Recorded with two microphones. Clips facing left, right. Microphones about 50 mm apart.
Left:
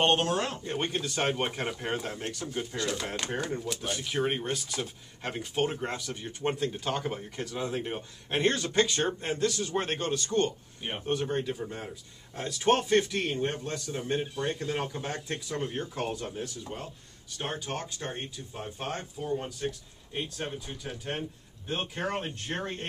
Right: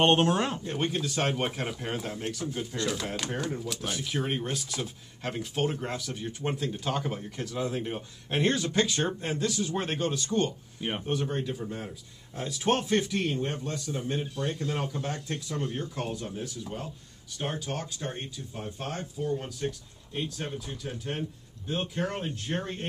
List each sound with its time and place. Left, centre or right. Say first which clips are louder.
0.0 s speech: right 3 dB; centre
0.7 s speech: right 1 dB; centre
17.6 s speech: right 1 dB; left
18.0 s speech: right 1 dB; centre
22.3 s speech: right 1 dB; centre